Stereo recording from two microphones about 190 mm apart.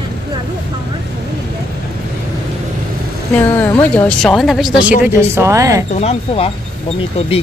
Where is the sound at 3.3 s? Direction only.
10° left (ahead or behind).